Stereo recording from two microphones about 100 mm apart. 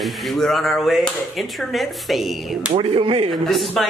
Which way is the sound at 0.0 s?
Centre (ahead or behind).